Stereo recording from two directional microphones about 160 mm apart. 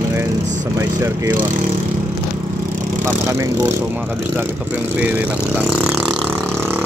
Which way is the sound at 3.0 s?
15° right (ahead or behind).